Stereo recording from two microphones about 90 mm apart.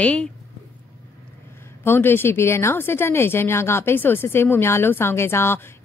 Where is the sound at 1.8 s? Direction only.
25° left (ahead or behind).